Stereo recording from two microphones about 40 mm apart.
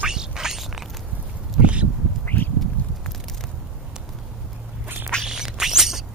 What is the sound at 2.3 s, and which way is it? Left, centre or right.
Duck, left.